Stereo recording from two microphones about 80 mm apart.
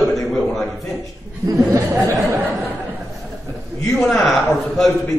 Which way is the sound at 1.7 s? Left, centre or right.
Right.